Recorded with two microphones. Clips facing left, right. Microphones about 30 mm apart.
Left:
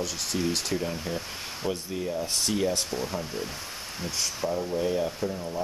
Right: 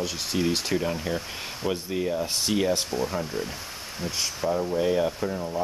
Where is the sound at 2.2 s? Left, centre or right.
Centre.